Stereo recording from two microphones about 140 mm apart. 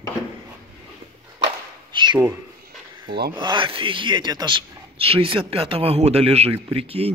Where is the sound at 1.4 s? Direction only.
35° right (ahead or behind).